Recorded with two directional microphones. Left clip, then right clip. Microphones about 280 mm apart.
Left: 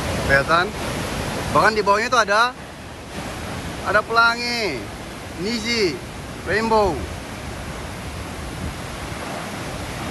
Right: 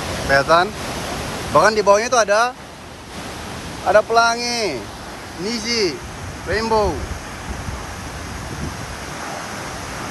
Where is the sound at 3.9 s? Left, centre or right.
Centre.